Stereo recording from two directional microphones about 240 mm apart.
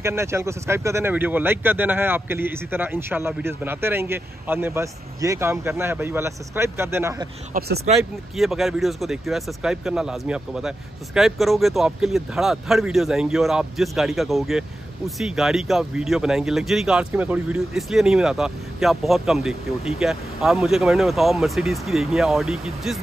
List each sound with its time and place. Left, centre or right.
0.0 s speech: centre
7.5 s speech: right
8.0 s speech: centre